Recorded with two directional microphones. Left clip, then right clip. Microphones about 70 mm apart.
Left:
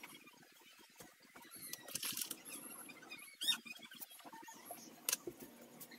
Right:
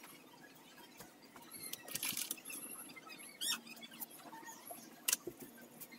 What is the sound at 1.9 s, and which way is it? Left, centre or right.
Coin, right.